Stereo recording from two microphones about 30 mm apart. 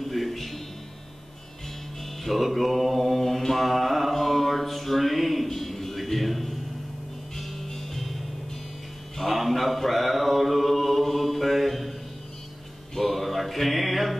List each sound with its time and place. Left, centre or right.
0.0 s music: centre
2.2 s mantra: centre
7.3 s music: centre
9.1 s mantra: centre
12.9 s music: centre